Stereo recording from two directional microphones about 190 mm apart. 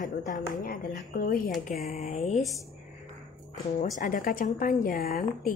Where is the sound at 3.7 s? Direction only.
40° left (ahead or behind).